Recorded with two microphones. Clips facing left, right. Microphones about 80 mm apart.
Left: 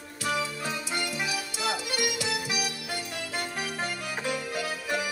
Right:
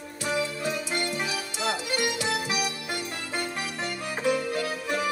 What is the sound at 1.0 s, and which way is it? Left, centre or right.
Music, right.